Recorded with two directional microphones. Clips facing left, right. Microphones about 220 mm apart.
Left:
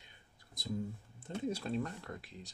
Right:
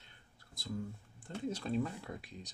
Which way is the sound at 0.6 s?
15° left (ahead or behind).